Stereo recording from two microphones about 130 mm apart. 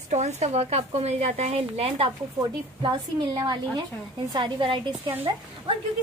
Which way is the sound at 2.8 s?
35° right (ahead or behind).